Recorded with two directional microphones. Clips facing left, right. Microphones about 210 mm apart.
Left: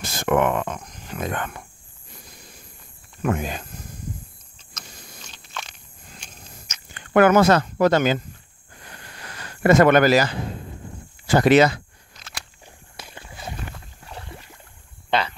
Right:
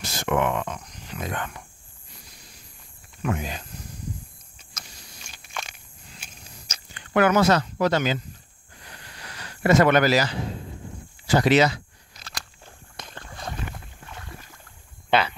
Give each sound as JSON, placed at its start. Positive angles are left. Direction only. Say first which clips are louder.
{"t": 0.0, "sound": "speech", "louder": "left 4 dB", "side_deg": 50}
{"t": 3.2, "sound": "speech", "louder": "left 4 dB", "side_deg": 50}
{"t": 5.2, "sound": "biting", "louder": "right 1 dB", "side_deg": -10}
{"t": 6.2, "sound": "a sound", "louder": "left 2 dB", "side_deg": -5}
{"t": 6.9, "sound": "speech", "louder": "left 5 dB", "side_deg": 50}
{"t": 8.7, "sound": "a sound", "louder": "left 3 dB", "side_deg": 50}
{"t": 11.2, "sound": "speech", "louder": "left 4 dB", "side_deg": 50}
{"t": 12.6, "sound": "boat", "louder": "even", "side_deg": 10}
{"t": 15.0, "sound": "a sound", "louder": "right 1 dB", "side_deg": -5}